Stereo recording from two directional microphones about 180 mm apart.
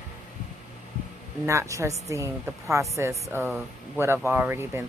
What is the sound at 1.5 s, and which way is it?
Speech, 15° right (ahead or behind).